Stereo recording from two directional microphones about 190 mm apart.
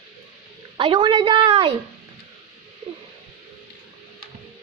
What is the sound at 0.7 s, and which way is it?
A woman's voice, 25° right (ahead or behind).